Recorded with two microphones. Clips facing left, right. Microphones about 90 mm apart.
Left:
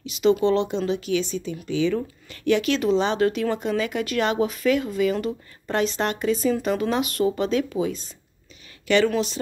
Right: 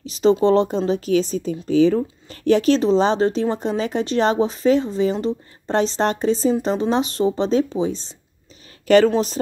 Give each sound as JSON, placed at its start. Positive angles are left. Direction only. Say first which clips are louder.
{"t": 0.0, "sound": "speech", "louder": "right 3 dB", "side_deg": -35}